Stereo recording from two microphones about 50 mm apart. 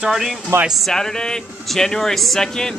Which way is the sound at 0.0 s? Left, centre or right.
Centre.